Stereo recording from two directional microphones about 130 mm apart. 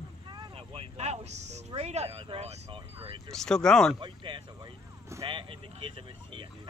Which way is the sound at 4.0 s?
40° right (ahead or behind).